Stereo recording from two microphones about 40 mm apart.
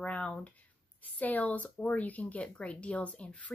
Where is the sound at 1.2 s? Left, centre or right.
Left.